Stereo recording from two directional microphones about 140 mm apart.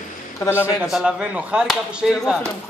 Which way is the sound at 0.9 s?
5° right (ahead or behind).